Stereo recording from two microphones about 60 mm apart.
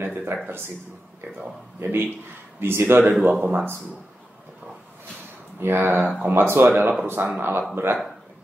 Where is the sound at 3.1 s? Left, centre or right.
Right.